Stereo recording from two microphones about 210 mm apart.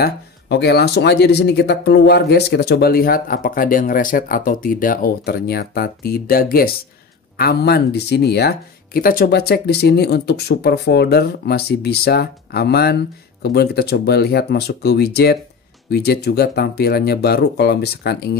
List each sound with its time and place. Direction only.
0.0 s speech: 50° left (ahead or behind)